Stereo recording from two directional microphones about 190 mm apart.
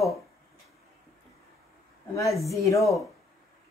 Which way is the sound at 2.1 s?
15° left (ahead or behind).